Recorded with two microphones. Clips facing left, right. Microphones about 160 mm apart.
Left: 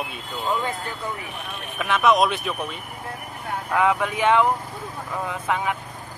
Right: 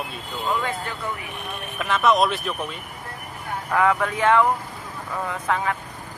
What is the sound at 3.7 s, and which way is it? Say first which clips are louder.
Speech: right 1 dB; 10° left (ahead or behind).